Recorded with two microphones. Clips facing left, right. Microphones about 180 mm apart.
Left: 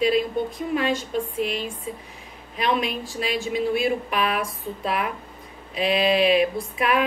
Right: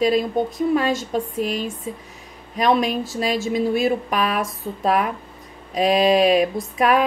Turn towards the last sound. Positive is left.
turn(degrees=-40)  # may be behind; listen again after turning